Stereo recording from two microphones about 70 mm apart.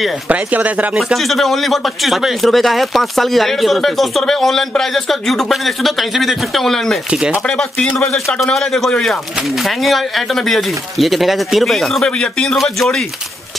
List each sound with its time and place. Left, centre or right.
0.3 s speech: right
0.9 s a man's voice: centre
7.1 s speech: centre
7.4 s a man's voice: centre
12.2 s a man's voice: centre